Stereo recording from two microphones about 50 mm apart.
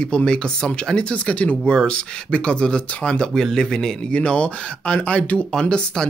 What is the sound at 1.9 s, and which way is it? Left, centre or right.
Speech, centre.